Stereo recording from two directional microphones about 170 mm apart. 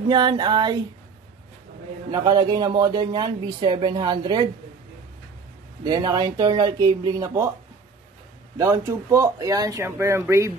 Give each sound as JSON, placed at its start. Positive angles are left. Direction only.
{"t": 0.1, "sound": "speech", "side_deg": -25}
{"t": 2.0, "sound": "speech", "side_deg": -25}
{"t": 5.9, "sound": "speech", "side_deg": -25}
{"t": 8.5, "sound": "speech", "side_deg": -15}